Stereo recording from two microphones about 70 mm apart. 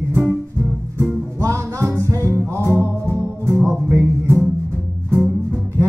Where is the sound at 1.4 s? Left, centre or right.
Right.